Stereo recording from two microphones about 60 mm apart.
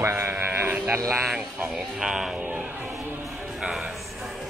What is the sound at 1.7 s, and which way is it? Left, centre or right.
Speech, centre.